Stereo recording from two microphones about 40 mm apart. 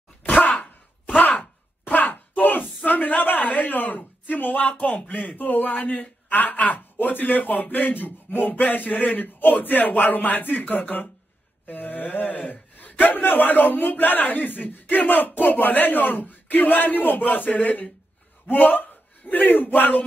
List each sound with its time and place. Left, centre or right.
0.2 s a sound: left
4.6 s speech: left
5.3 s speech: left